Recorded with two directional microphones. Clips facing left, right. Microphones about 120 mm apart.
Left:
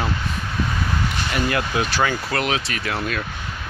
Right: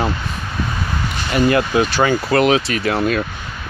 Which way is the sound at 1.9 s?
20° right (ahead or behind).